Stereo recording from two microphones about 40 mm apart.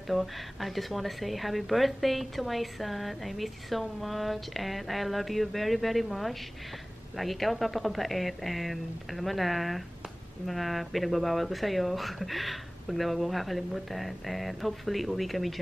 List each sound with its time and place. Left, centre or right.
0.1 s speech: centre